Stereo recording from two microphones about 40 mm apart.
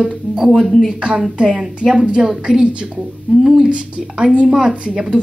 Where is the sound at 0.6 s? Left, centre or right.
Centre.